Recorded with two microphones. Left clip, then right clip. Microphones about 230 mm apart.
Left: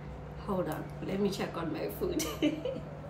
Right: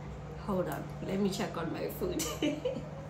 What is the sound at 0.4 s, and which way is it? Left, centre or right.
Speech, centre.